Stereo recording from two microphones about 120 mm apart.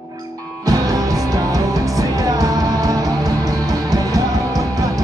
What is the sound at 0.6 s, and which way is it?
Music, 30° right (ahead or behind).